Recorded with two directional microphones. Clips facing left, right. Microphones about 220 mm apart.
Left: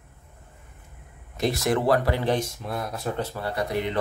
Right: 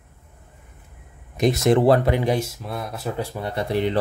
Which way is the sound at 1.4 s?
20° right (ahead or behind).